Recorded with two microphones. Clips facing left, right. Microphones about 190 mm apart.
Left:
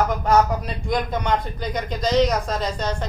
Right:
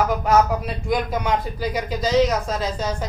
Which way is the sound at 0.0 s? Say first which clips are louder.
Right 1 dB; 5° right (ahead or behind).